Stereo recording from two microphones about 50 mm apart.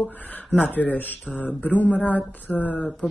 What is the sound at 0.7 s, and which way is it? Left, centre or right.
Speech, left.